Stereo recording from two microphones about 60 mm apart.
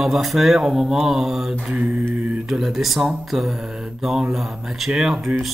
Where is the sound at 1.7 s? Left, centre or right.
Right.